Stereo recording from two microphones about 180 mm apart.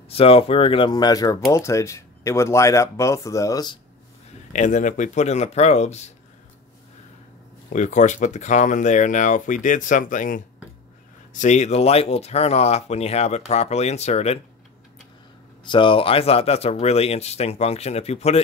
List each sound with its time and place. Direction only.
0.1 s speech: 30° left (ahead or behind)
4.5 s speech: 40° left (ahead or behind)
7.7 s speech: 45° left (ahead or behind)
15.7 s speech: 30° left (ahead or behind)